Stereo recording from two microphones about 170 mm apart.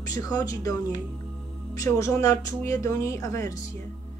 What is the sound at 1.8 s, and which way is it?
A woman's voice, 15° left (ahead or behind).